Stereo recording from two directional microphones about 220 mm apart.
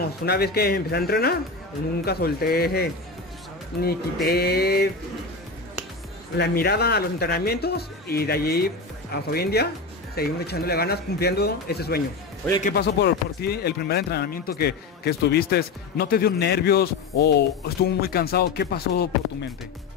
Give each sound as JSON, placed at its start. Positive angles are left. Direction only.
{"t": 0.2, "sound": "speech", "side_deg": 45}
{"t": 4.3, "sound": "speech", "side_deg": 45}
{"t": 6.3, "sound": "speech", "side_deg": 45}